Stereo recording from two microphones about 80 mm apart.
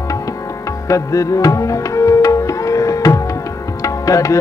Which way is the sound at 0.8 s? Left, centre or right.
Left.